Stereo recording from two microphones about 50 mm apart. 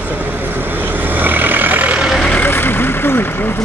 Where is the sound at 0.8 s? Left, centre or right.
Right.